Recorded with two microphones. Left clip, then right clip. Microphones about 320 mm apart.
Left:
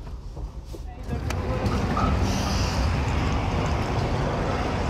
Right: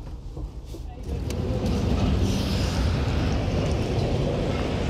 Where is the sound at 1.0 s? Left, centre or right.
Centre.